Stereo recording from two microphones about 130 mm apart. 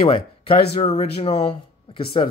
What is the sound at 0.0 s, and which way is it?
Speech, 45° left (ahead or behind).